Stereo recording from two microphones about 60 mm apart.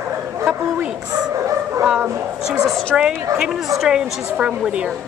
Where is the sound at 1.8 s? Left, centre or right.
Centre.